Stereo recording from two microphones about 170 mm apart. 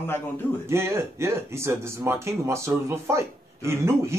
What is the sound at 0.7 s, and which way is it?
Speech, 15° right (ahead or behind).